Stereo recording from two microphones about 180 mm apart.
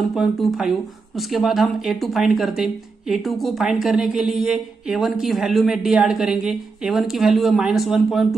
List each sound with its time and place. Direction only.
0.1 s speech: centre (ahead or behind)